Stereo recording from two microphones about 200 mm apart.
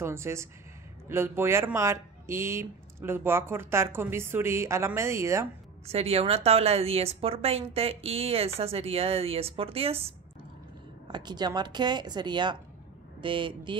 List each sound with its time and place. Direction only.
0.0 s speech: 10° right (ahead or behind)
5.9 s a woman's voice: 30° right (ahead or behind)